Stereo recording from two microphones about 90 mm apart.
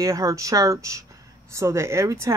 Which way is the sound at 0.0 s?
35° right (ahead or behind).